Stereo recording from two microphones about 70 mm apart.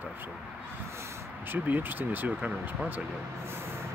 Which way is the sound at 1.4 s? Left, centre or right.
Right.